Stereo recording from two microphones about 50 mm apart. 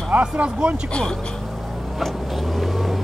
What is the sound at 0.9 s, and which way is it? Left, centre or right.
Speech, centre.